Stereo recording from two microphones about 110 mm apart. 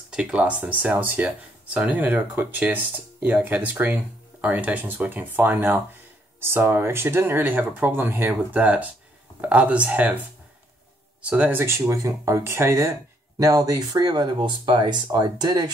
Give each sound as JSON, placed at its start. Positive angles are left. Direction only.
{"t": 0.1, "sound": "speech", "side_deg": -10}
{"t": 11.2, "sound": "speech", "side_deg": -15}